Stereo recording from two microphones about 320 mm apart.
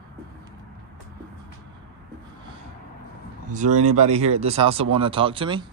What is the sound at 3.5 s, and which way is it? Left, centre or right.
Speech, right.